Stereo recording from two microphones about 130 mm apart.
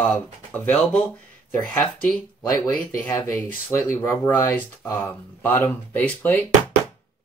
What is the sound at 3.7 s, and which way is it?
Speech, 20° left (ahead or behind).